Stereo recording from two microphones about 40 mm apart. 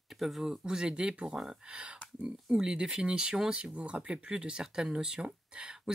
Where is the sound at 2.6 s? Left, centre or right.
Centre.